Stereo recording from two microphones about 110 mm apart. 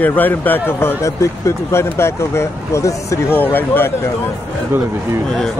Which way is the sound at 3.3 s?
15° left (ahead or behind).